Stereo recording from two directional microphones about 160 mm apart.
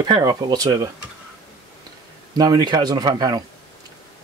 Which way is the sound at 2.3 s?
25° right (ahead or behind).